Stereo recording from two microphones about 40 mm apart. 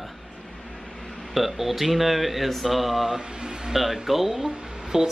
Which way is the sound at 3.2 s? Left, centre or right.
Centre.